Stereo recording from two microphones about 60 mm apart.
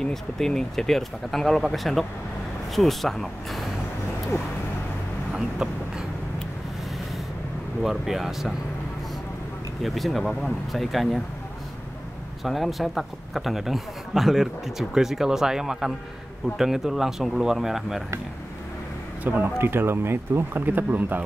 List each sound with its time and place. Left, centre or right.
0.0 s a man's voice: centre
5.3 s vehicle: centre
7.8 s a man's voice: centre
9.8 s a man's voice: centre
12.4 s a man's voice: centre
19.2 s speech: right